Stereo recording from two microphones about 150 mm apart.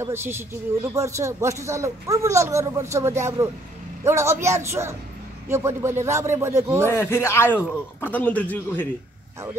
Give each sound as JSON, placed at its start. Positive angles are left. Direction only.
{"t": 0.0, "sound": "speech", "side_deg": -15}
{"t": 6.8, "sound": "speech", "side_deg": 15}